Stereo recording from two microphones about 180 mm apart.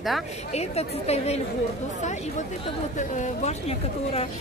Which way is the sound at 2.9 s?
45° left (ahead or behind).